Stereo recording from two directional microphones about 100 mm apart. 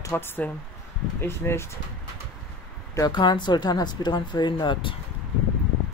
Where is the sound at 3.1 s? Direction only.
50° left (ahead or behind).